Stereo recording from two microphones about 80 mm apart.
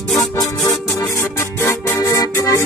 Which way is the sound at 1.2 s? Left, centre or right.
Left.